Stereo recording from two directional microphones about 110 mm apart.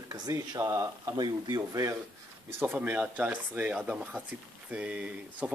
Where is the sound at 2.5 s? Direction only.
15° right (ahead or behind).